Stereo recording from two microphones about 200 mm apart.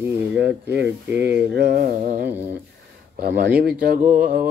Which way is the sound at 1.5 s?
50° right (ahead or behind).